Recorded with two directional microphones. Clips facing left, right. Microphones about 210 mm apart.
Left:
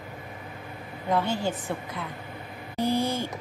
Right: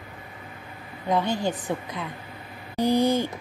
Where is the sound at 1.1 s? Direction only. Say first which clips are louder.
Right 2 dB; 15° right (ahead or behind).